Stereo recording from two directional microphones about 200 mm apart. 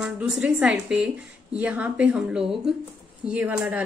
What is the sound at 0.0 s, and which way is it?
Speech, 5° right (ahead or behind).